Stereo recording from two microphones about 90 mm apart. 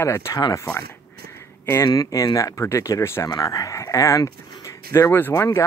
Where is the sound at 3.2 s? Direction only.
45° left (ahead or behind).